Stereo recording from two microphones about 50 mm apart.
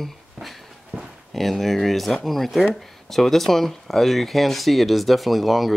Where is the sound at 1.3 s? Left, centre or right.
Centre.